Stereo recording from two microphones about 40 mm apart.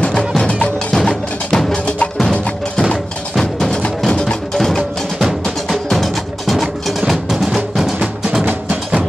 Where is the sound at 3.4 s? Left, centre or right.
Centre.